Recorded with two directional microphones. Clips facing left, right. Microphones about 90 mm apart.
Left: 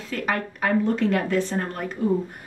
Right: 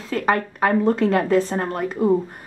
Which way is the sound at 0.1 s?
35° right (ahead or behind).